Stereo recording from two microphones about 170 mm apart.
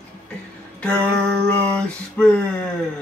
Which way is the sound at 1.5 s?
5° left (ahead or behind).